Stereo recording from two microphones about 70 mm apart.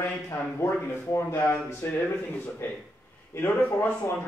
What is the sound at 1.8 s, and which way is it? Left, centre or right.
Speech, left.